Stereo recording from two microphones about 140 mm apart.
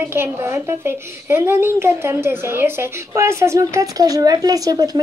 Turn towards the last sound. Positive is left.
turn(degrees=-25)  # may be behind; listen again after turning